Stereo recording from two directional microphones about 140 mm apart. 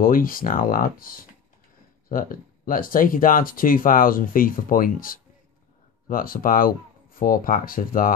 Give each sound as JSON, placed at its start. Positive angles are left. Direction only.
{"t": 0.0, "sound": "speech", "side_deg": 90}